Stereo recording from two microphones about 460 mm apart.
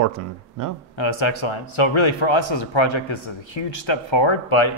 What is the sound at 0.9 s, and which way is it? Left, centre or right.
A man's voice, left.